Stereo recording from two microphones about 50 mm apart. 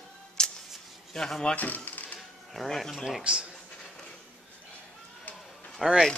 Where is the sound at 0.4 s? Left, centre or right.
Centre.